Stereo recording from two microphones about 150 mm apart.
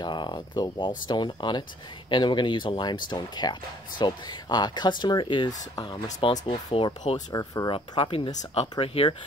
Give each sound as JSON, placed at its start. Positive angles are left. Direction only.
{"t": 0.0, "sound": "speech", "side_deg": 30}
{"t": 7.2, "sound": "speech", "side_deg": 25}